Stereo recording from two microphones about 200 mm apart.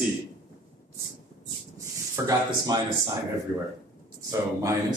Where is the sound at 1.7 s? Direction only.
15° right (ahead or behind).